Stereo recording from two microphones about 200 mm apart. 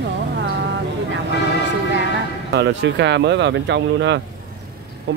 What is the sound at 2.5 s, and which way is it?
Speech, 60° right (ahead or behind).